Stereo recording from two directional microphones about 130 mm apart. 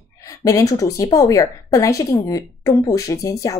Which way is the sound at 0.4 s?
25° left (ahead or behind).